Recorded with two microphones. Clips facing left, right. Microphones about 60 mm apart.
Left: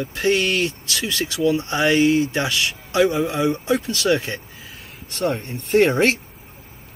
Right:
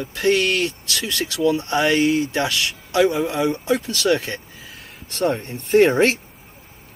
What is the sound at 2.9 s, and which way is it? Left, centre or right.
Speech, left.